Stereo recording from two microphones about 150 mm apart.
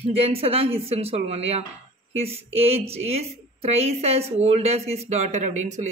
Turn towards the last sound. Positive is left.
turn(degrees=-55)  # may be behind; listen again after turning